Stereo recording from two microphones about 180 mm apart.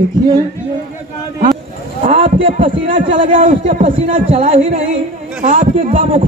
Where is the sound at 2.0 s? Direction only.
30° right (ahead or behind).